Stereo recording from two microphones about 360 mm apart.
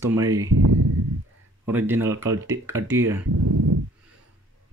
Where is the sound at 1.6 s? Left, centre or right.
Centre.